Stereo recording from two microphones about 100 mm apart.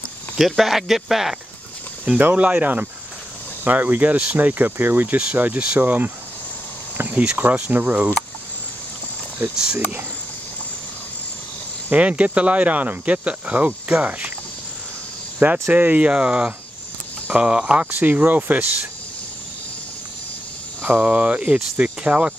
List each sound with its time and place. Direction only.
0.4 s speech: centre (ahead or behind)
2.0 s speech: 15° right (ahead or behind)
11.9 s speech: 15° right (ahead or behind)
15.3 s speech: 15° right (ahead or behind)
20.8 s speech: 20° right (ahead or behind)